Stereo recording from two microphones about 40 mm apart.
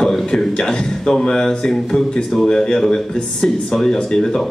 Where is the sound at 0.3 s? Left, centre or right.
Centre.